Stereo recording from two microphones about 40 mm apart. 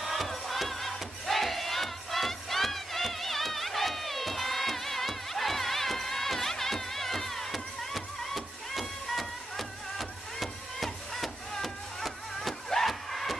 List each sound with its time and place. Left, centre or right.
0.0 s crowd: centre